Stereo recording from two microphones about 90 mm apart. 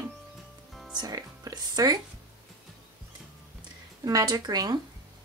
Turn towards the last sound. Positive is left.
turn(degrees=-50)  # may be behind; listen again after turning